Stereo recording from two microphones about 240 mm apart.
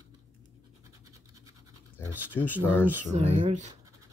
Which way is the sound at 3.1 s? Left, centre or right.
Right.